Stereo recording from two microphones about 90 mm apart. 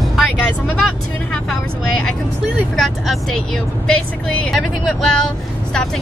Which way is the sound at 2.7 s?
Centre (ahead or behind).